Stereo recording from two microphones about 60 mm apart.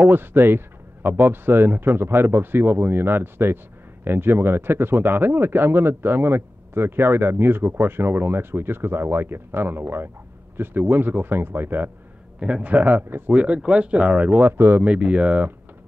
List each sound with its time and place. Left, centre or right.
0.1 s speech: right
1.5 s speech: right
12.4 s speech: centre
14.4 s speech: right
14.8 s speech: centre